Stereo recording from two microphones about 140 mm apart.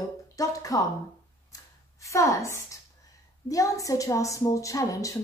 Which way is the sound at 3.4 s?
25° left (ahead or behind).